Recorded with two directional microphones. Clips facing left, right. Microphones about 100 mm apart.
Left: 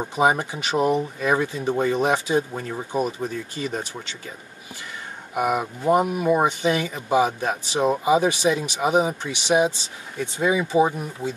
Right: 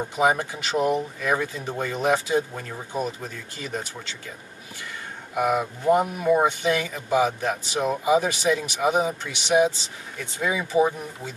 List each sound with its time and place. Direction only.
0.2 s speech: 20° left (ahead or behind)
5.5 s speech: 20° left (ahead or behind)